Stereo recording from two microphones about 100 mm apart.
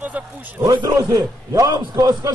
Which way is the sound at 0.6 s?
40° right (ahead or behind).